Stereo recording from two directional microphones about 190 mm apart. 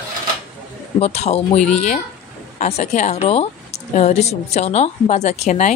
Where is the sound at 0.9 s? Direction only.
35° left (ahead or behind).